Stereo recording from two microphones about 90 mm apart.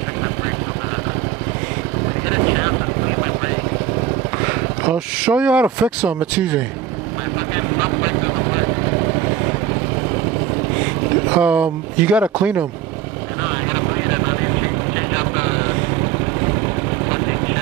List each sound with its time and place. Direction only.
2.2 s vehicle: 20° right (ahead or behind)
4.4 s speech: 15° right (ahead or behind)
7.5 s vehicle: 20° right (ahead or behind)
11.2 s speech: 15° right (ahead or behind)
13.4 s vehicle: 20° right (ahead or behind)